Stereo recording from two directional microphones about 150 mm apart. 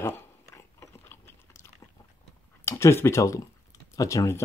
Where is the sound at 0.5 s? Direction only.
20° left (ahead or behind).